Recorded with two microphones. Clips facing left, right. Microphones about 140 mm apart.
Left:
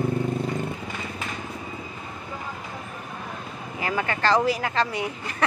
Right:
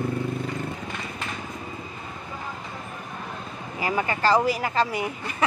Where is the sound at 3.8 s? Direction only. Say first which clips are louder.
Right 1 dB; 10° right (ahead or behind).